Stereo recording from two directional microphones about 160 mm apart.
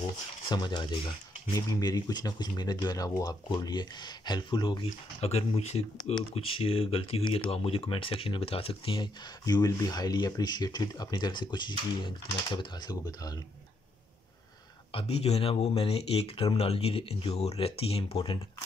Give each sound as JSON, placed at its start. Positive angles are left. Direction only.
{"t": 0.5, "sound": "speech", "side_deg": 30}
{"t": 14.9, "sound": "speech", "side_deg": 35}